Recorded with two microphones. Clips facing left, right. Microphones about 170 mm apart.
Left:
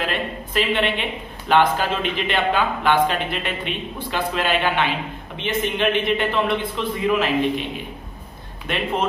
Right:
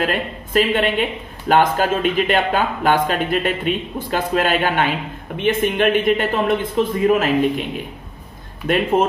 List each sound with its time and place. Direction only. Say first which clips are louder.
0.0 s a sound: right 4 dB; 45° right (ahead or behind)
1.5 s speech: right 2 dB; 45° right (ahead or behind)
8.6 s speech: right 7 dB; 45° right (ahead or behind)